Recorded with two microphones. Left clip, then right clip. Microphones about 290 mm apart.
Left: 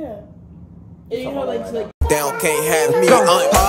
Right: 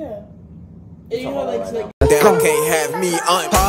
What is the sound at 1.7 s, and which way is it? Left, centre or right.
Speech, centre.